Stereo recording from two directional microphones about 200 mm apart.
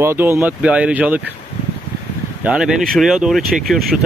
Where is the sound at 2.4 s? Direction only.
5° right (ahead or behind).